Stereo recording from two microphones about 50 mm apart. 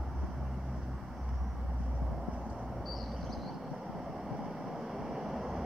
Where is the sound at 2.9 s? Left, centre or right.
Centre.